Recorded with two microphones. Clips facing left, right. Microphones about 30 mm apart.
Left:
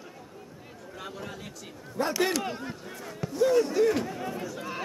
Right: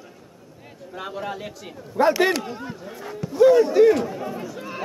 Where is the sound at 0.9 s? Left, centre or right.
Right.